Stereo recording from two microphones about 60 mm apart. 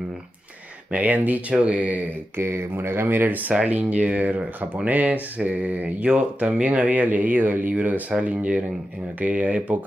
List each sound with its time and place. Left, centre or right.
0.9 s speech: right
2.3 s speech: right